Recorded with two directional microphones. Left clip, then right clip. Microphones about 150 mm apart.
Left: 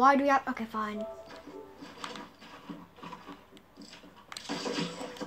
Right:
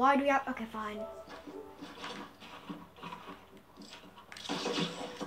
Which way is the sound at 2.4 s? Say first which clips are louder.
Even; 5° right (ahead or behind).